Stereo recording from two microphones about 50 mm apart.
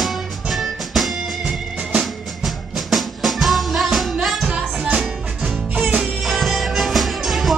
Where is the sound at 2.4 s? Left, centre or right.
Centre.